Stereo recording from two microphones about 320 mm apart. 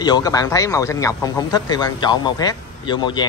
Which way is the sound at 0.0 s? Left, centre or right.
Centre.